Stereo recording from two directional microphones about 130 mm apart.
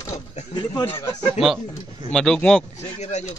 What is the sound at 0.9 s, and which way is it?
Speech, 20° left (ahead or behind).